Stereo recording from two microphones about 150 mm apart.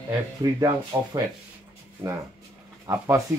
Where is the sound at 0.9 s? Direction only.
20° right (ahead or behind).